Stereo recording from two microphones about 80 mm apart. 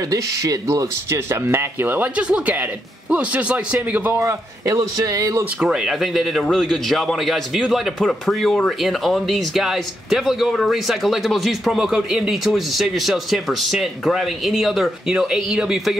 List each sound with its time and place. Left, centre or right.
0.1 s speech: right; by 4.2 s centre
4.2 s a man's voice: right
5.7 s a man's voice: centre